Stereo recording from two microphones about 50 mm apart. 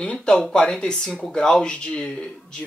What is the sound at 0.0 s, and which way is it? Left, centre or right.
Speech, centre.